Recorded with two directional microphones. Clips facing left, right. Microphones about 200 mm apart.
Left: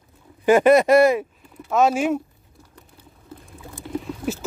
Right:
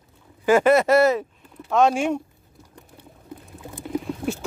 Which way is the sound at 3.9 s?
Centre (ahead or behind).